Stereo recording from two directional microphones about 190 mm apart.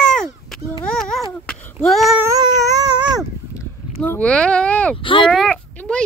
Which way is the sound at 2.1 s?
15° right (ahead or behind).